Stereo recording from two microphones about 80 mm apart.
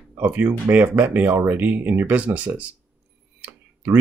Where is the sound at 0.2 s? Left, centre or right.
Centre.